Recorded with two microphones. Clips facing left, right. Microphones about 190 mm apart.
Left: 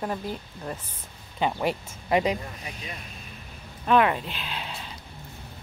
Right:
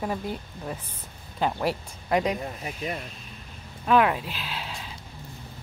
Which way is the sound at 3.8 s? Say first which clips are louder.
Even; centre (ahead or behind).